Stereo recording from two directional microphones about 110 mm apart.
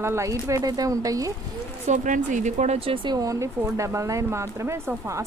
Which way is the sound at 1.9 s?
90° right.